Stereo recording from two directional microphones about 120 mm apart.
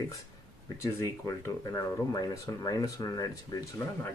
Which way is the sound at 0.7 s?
30° left (ahead or behind).